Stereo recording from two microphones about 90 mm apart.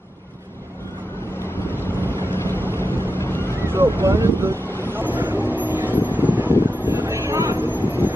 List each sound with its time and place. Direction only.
1.7 s vehicle: 25° left (ahead or behind)
3.5 s vehicle: 25° right (ahead or behind)
4.0 s speech: 30° right (ahead or behind)
4.8 s vehicle: 20° right (ahead or behind)